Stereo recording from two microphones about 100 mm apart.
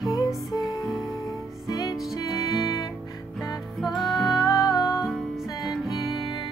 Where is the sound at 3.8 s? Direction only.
Centre (ahead or behind).